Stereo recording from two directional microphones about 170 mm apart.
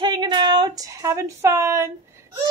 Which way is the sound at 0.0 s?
25° right (ahead or behind).